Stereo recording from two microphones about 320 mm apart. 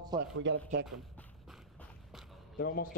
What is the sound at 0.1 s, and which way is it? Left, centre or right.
Speech, centre.